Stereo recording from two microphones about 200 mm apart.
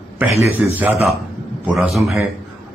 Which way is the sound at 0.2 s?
10° right (ahead or behind).